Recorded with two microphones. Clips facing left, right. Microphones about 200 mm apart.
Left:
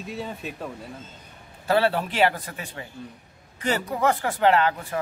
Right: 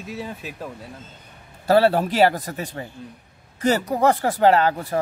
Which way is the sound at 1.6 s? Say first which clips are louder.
Right 5 dB; 40° right (ahead or behind).